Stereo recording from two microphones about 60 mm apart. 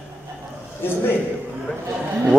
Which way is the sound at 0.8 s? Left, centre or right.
Left.